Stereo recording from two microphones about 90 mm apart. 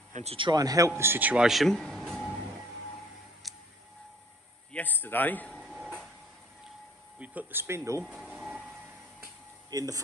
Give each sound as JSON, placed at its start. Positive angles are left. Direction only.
{"t": 0.5, "sound": "a man's voice", "side_deg": -45}
{"t": 1.4, "sound": "speech", "side_deg": 0}
{"t": 3.4, "sound": "tick", "side_deg": 0}
{"t": 4.7, "sound": "speech", "side_deg": 20}
{"t": 5.5, "sound": "a sound", "side_deg": -5}
{"t": 7.2, "sound": "speech", "side_deg": -20}
{"t": 7.6, "sound": "a man's voice", "side_deg": -30}
{"t": 8.0, "sound": "a sound", "side_deg": -5}
{"t": 9.7, "sound": "speech", "side_deg": -40}